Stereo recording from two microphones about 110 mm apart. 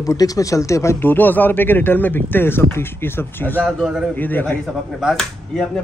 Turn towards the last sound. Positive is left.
turn(degrees=5)  # may be behind; listen again after turning